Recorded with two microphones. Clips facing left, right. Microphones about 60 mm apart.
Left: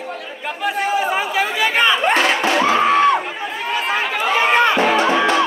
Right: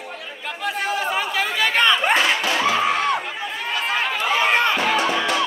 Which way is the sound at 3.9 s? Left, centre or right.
Centre.